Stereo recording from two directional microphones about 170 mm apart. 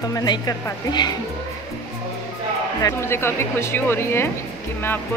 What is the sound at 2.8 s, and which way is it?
Speech, 15° left (ahead or behind).